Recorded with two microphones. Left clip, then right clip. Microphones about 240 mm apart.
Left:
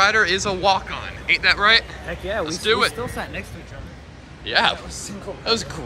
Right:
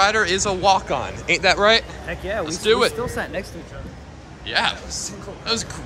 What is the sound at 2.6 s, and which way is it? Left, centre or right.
Speech, centre.